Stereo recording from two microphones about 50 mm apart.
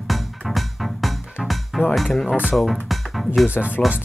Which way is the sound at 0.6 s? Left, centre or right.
Centre.